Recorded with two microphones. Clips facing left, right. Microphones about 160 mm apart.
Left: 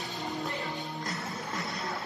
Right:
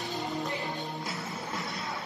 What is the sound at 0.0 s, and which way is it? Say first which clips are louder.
Music: right 2 dB; centre (ahead or behind).